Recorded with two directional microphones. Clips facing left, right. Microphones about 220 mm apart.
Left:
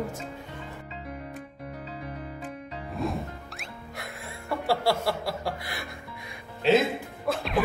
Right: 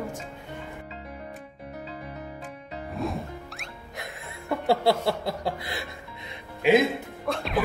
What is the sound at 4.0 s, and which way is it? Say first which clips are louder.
Chuckle: right 2 dB; 20° right (ahead or behind).